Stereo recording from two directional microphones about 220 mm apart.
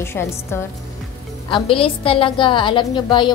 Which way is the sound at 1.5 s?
25° left (ahead or behind).